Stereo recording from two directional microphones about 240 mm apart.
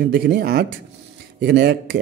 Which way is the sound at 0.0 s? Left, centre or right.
Right.